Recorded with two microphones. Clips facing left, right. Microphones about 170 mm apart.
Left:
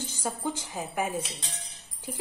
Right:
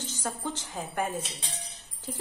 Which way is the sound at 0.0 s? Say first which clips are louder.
Left 2 dB; 10° left (ahead or behind).